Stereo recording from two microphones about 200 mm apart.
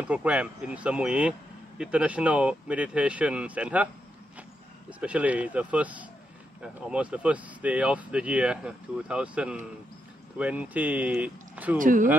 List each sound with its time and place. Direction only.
0.0 s speech: 5° right (ahead or behind)
11.8 s speech: 40° right (ahead or behind)